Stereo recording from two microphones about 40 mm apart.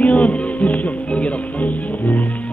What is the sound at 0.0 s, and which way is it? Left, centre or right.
Music, left.